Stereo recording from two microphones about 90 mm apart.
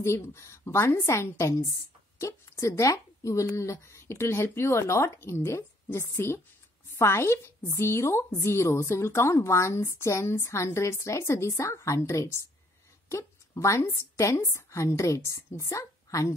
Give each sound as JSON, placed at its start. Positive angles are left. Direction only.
{"t": 0.0, "sound": "a woman's voice", "side_deg": 30}